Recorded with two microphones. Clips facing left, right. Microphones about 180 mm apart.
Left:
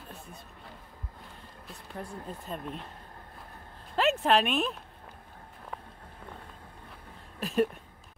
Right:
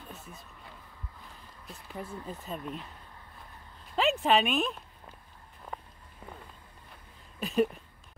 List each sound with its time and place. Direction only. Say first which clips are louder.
1.7 s speech: even; centre (ahead or behind)
3.9 s speech: left 1 dB; centre (ahead or behind)
7.3 s a sound: even; centre (ahead or behind)